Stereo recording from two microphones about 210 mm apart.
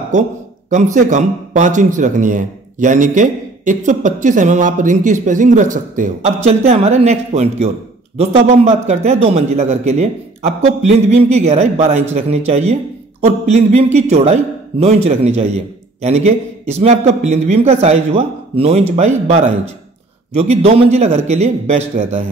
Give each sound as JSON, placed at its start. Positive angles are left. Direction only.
{"t": 0.1, "sound": "a man's voice", "side_deg": -35}